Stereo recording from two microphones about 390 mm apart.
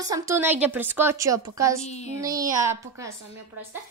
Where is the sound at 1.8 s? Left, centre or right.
Centre.